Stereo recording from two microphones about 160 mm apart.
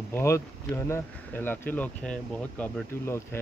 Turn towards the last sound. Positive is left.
turn(degrees=10)  # may be behind; listen again after turning